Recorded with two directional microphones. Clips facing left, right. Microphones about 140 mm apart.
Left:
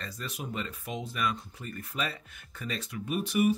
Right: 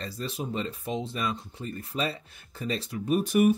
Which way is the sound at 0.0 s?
30° right (ahead or behind).